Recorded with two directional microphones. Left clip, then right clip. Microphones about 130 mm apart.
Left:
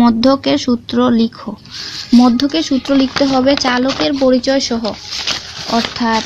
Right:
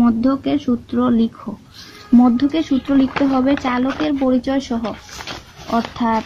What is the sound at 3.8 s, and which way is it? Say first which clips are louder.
Speech: left 5 dB; 55° left (ahead or behind).